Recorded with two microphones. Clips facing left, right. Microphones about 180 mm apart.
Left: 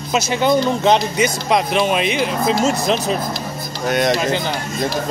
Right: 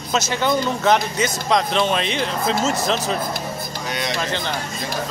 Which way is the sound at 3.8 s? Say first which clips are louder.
Left 10 dB; 50° left (ahead or behind).